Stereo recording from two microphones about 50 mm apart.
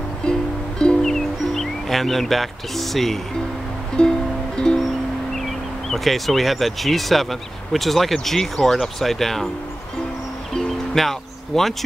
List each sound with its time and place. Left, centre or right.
0.3 s music: centre
1.0 s music: centre
4.0 s music: centre
5.3 s speech: centre
10.5 s music: centre